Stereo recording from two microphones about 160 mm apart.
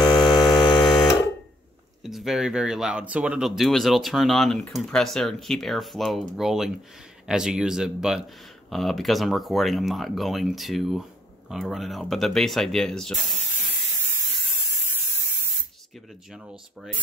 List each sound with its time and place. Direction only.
0.0 s hum: centre (ahead or behind)
0.6 s a sound: 30° left (ahead or behind)
2.0 s speech: centre (ahead or behind)
16.3 s speech: centre (ahead or behind)